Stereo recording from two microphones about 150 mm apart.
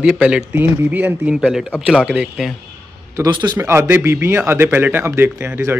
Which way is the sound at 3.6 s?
15° right (ahead or behind).